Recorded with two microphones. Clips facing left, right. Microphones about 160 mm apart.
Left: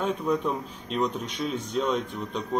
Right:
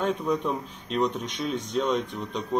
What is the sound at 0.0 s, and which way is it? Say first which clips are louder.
Speech: even; centre (ahead or behind).